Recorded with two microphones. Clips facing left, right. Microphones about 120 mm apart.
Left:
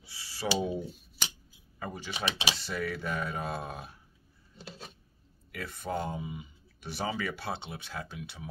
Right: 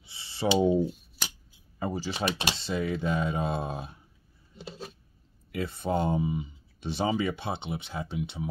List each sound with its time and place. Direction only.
0.0 s a sound: 25° right (ahead or behind)
1.8 s speech: 30° right (ahead or behind)
2.2 s speech: 55° right (ahead or behind)
2.5 s speech: 25° right (ahead or behind)
5.5 s speech: 25° right (ahead or behind)